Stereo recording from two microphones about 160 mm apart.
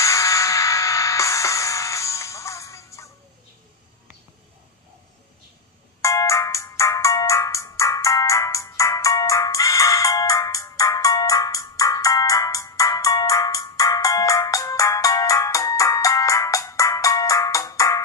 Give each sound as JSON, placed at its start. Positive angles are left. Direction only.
{"t": 0.0, "sound": "music", "side_deg": 20}
{"t": 5.9, "sound": "ringtone", "side_deg": 20}